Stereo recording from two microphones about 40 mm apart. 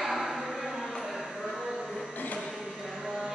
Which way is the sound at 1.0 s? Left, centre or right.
Centre.